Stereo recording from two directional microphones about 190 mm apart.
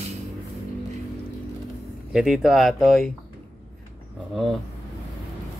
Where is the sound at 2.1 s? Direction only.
Centre (ahead or behind).